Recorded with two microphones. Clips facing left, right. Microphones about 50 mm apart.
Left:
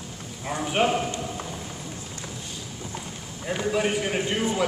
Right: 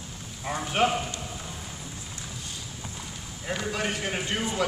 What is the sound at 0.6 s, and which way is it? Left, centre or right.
Speech, centre.